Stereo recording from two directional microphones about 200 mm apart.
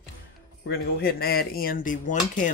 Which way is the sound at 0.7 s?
50° left (ahead or behind).